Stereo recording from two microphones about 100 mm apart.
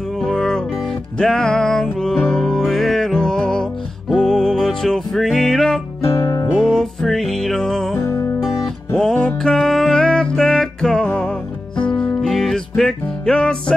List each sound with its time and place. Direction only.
0.2 s music: 5° left (ahead or behind)
6.1 s music: 30° left (ahead or behind)
6.5 s music: centre (ahead or behind)
8.0 s music: 30° left (ahead or behind)
8.4 s music: centre (ahead or behind)
11.7 s music: 50° left (ahead or behind)
12.2 s music: centre (ahead or behind)